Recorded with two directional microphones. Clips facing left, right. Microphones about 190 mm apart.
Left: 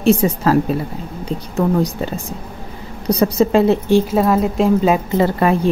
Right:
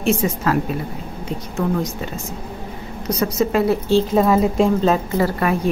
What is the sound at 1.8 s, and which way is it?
A woman's voice, 35° left (ahead or behind).